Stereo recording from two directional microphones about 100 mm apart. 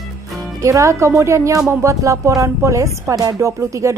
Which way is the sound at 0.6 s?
30° right (ahead or behind).